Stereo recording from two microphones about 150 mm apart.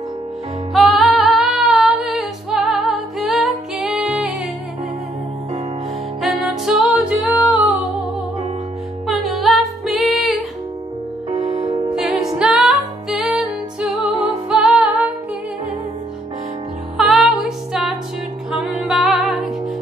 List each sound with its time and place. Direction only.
0.7 s female singing: centre (ahead or behind)
6.2 s music: 5° right (ahead or behind)
9.0 s music: centre (ahead or behind)
11.4 s music: 35° right (ahead or behind)
11.9 s music: 5° right (ahead or behind)
16.9 s music: centre (ahead or behind)